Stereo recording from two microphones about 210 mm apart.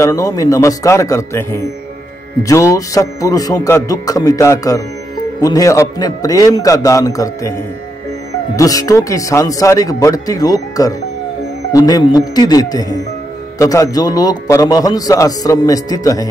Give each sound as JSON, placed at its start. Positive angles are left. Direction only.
{"t": 0.0, "sound": "a man's voice", "side_deg": 15}
{"t": 8.5, "sound": "a man's voice", "side_deg": 15}